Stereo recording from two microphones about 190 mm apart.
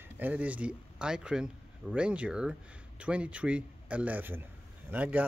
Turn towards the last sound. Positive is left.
turn(degrees=-10)  # may be behind; listen again after turning